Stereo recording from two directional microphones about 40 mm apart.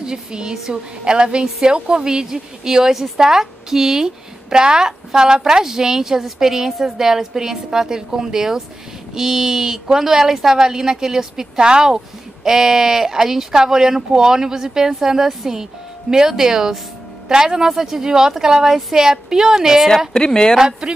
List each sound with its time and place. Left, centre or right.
0.0 s a woman's voice: right
20.1 s a woman's voice: centre
20.5 s speech: centre